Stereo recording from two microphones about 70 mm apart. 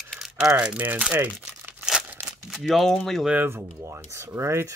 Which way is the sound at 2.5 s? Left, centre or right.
Centre.